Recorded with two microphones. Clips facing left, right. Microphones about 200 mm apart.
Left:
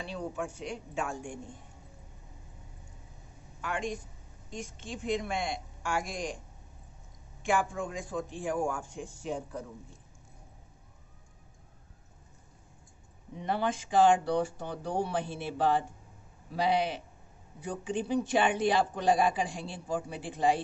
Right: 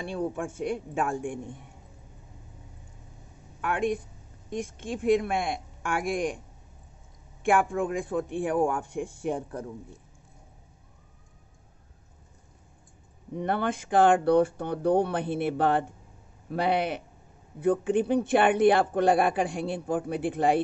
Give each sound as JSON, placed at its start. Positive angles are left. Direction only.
{"t": 0.1, "sound": "a man's voice", "side_deg": -55}
{"t": 3.6, "sound": "speech", "side_deg": -60}
{"t": 7.4, "sound": "speech", "side_deg": -55}
{"t": 13.3, "sound": "speech", "side_deg": -55}